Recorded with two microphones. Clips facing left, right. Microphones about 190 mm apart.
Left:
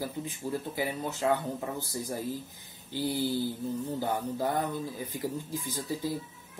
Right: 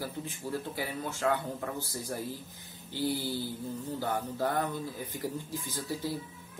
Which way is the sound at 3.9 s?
15° left (ahead or behind).